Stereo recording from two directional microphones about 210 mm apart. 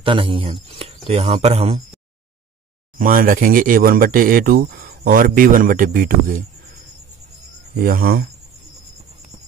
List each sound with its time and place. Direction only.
0.0 s speech: 25° right (ahead or behind)
3.0 s speech: 40° right (ahead or behind)
7.8 s speech: 45° right (ahead or behind)